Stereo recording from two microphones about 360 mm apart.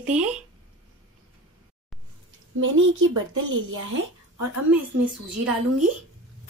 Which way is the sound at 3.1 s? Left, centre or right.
Right.